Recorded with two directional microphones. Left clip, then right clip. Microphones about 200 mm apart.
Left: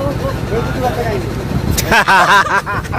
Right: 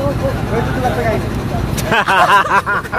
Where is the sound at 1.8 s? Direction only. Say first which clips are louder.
Left 2 dB; 15° left (ahead or behind).